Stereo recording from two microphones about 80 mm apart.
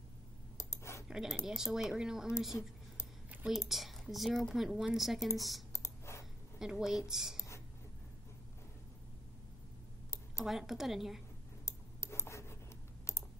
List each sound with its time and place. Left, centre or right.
0.6 s clicking: left
1.0 s a woman's voice: centre
5.7 s clicking: left
6.6 s a woman's voice: centre
7.3 s a sound: left
10.4 s a woman's voice: centre
11.6 s a sound: left